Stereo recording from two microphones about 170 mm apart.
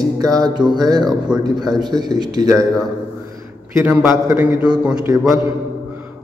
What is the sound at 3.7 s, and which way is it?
Speech, 10° right (ahead or behind).